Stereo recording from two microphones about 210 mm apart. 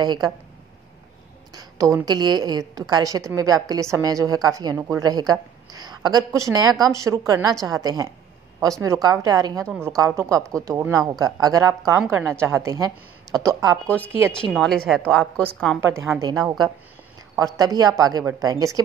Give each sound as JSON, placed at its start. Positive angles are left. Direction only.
{"t": 0.0, "sound": "a woman's voice", "side_deg": -20}
{"t": 1.5, "sound": "a woman's voice", "side_deg": -15}
{"t": 14.5, "sound": "a woman's voice", "side_deg": 0}
{"t": 16.2, "sound": "a woman's voice", "side_deg": -20}